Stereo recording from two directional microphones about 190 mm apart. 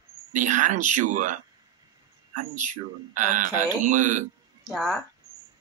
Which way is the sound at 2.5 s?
40° right (ahead or behind).